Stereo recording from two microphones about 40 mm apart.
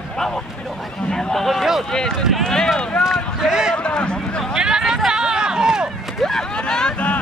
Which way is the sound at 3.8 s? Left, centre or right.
Left.